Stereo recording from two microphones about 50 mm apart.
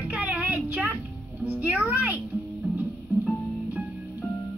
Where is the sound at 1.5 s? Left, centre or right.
Right.